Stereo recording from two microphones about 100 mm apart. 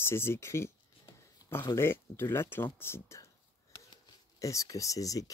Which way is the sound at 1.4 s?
40° left (ahead or behind).